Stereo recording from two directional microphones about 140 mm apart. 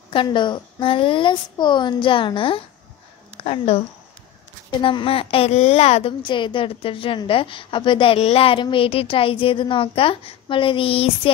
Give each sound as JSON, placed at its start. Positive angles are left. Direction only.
{"t": 0.1, "sound": "a woman's voice", "side_deg": 35}
{"t": 6.2, "sound": "a woman's voice", "side_deg": 35}